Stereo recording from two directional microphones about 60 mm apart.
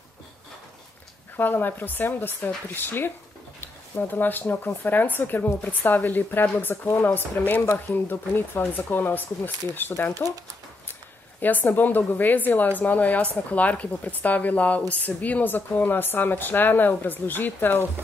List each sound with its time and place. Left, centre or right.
1.3 s speech: left
4.1 s speech: left